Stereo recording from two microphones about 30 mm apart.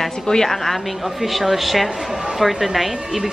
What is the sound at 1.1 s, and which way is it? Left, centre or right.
Speech, centre.